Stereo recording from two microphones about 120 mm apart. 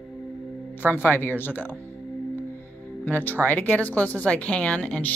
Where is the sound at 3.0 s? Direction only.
15° left (ahead or behind).